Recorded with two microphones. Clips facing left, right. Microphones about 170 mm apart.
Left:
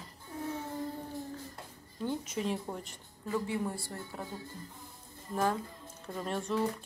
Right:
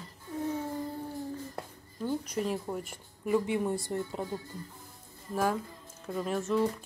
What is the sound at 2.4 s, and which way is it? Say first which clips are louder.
Speech: right 2 dB; 5° right (ahead or behind).